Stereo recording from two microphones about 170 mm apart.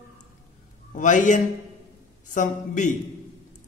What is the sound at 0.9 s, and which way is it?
Speech, 50° left (ahead or behind).